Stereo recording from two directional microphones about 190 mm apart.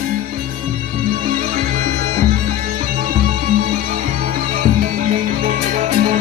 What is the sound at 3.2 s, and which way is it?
Music, 50° right (ahead or behind).